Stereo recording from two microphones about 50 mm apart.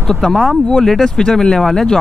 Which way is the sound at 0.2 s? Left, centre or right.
Centre.